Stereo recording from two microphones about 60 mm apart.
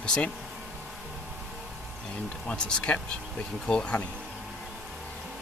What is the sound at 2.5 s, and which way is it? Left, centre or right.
Speech, centre.